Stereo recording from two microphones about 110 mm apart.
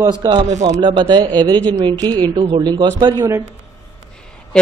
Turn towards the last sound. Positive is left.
turn(degrees=-40)  # may be behind; listen again after turning